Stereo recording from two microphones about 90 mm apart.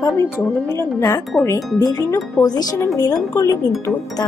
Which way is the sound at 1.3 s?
20° left (ahead or behind).